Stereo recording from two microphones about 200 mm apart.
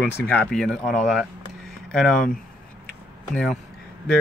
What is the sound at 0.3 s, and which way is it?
Speech, 5° left (ahead or behind).